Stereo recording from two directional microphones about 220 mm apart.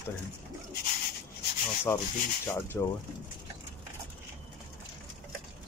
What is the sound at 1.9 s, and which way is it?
Speech, 10° left (ahead or behind).